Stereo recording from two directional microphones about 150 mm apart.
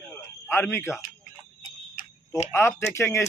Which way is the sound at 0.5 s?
15° left (ahead or behind).